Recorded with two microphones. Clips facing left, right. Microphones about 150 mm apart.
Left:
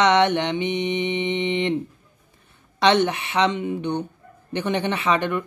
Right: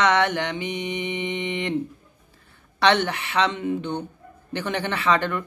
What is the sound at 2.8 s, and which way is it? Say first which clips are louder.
Speech: left 2 dB; 20° left (ahead or behind).